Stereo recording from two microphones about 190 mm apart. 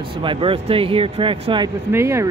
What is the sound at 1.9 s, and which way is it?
Speech, 15° right (ahead or behind).